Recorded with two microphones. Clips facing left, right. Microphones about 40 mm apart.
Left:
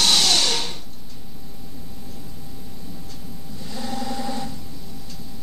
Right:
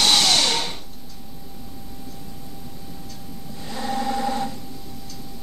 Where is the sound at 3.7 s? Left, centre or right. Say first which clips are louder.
Right 4 dB; right.